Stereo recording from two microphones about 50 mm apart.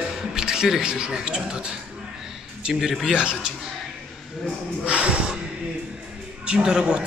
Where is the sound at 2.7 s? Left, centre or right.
Centre.